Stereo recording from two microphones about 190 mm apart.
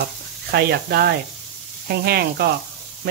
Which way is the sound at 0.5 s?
55° right (ahead or behind).